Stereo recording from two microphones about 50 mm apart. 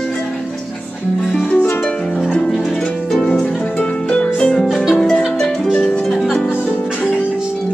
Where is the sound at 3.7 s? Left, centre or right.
Left.